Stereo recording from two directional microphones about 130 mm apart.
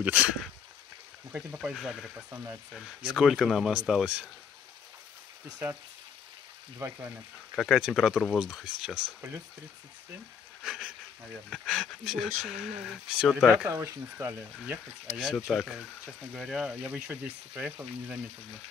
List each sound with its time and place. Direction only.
0.0 s frying: 10° right (ahead or behind)
1.3 s speech: 10° right (ahead or behind)
2.3 s speech: 25° right (ahead or behind)
3.1 s speech: 5° right (ahead or behind)
6.8 s frying: 15° right (ahead or behind)
7.5 s speech: centre (ahead or behind)
10.6 s speech: 5° right (ahead or behind)
13.7 s speech: 20° right (ahead or behind)
15.1 s speech: 5° right (ahead or behind)